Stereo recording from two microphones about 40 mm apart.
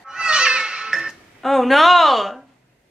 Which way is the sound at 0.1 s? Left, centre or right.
Centre.